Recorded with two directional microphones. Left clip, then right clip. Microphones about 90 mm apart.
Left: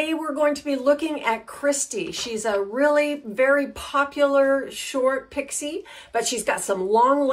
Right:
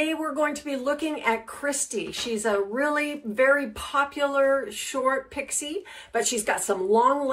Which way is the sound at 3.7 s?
20° left (ahead or behind).